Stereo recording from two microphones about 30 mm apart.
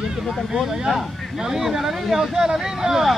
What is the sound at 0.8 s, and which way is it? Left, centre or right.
Speech, centre.